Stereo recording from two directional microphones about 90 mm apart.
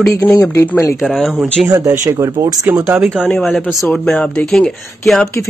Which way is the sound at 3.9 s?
10° left (ahead or behind).